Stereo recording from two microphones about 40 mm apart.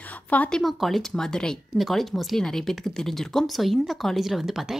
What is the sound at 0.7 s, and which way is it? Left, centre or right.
Speech, centre.